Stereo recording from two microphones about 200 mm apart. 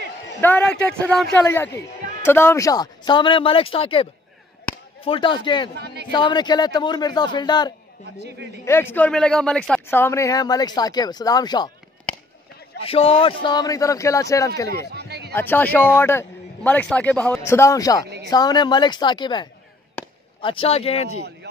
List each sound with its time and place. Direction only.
0.4 s speech: 10° left (ahead or behind)
5.8 s a sound: 55° right (ahead or behind)
6.1 s speech: 20° left (ahead or behind)
12.8 s speech: 30° left (ahead or behind)
14.9 s a sound: 55° right (ahead or behind)
15.3 s speech: 10° left (ahead or behind)
20.0 s chop: 5° left (ahead or behind)
20.3 s speech: 25° left (ahead or behind)